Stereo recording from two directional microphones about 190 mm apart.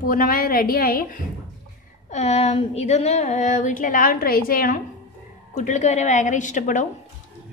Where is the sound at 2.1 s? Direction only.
35° left (ahead or behind).